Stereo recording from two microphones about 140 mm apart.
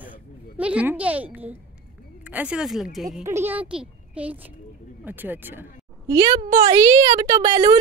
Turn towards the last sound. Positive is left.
turn(degrees=-25)  # may be behind; listen again after turning